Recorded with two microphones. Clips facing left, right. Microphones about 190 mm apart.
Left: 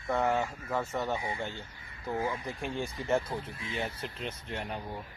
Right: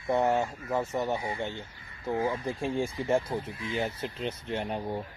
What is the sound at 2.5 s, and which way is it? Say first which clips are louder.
Speech: right 5 dB; 30° right (ahead or behind).